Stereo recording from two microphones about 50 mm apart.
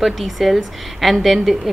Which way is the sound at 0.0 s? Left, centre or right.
Centre.